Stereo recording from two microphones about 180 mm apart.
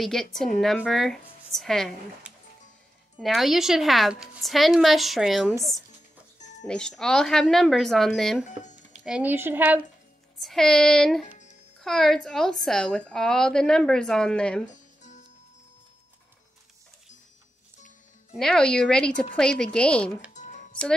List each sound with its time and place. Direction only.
0.0 s a woman's voice: centre (ahead or behind)
6.7 s a woman's voice: 5° left (ahead or behind)
8.5 s speech: 40° left (ahead or behind)
9.0 s speech: 5° right (ahead or behind)
10.4 s a woman's voice: 5° left (ahead or behind)
18.3 s a woman's voice: 5° left (ahead or behind)